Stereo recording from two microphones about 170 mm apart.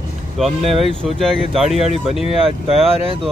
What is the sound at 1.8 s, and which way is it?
Speech, 35° left (ahead or behind).